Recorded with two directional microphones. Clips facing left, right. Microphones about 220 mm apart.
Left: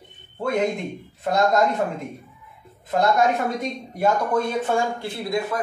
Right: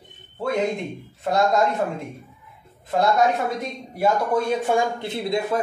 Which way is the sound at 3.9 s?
10° right (ahead or behind).